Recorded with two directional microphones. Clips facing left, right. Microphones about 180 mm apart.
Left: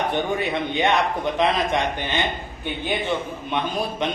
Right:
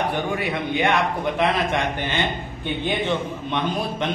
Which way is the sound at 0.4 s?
25° left (ahead or behind).